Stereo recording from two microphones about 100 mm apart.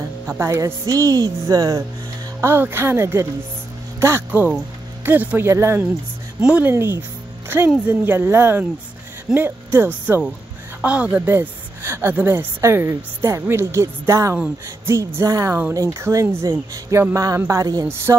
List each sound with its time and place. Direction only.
0.3 s speech: 25° right (ahead or behind)
0.6 s speech: 35° right (ahead or behind)
2.4 s a woman's voice: 25° right (ahead or behind)
5.5 s a woman's voice: 30° right (ahead or behind)
6.4 s speech: 10° right (ahead or behind)
6.7 s a woman's voice: 25° right (ahead or behind)
11.2 s a woman's voice: 25° right (ahead or behind)
17.8 s a woman's voice: 25° right (ahead or behind)